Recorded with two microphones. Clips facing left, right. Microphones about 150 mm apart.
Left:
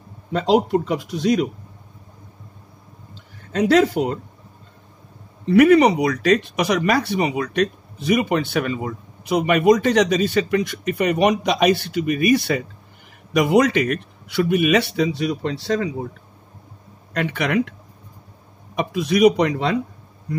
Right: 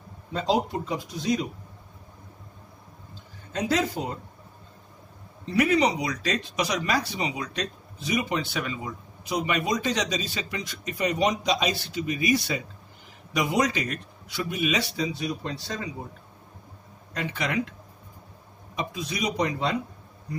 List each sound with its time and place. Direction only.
0.3 s speech: 75° left (ahead or behind)
3.5 s speech: 75° left (ahead or behind)
5.4 s speech: 60° left (ahead or behind); by 15.9 s 75° left (ahead or behind)
17.1 s speech: 65° left (ahead or behind)
18.8 s speech: 65° left (ahead or behind)